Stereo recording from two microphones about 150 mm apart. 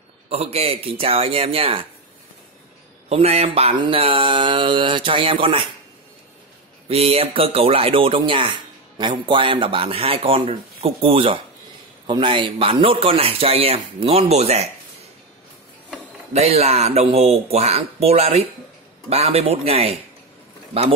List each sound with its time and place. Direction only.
0.3 s speech: 45° right (ahead or behind)
3.1 s speech: 45° right (ahead or behind)
6.9 s speech: 40° right (ahead or behind)
8.3 s music: 35° right (ahead or behind)
9.2 s speech: 35° right (ahead or behind)
16.3 s speech: 45° right (ahead or behind)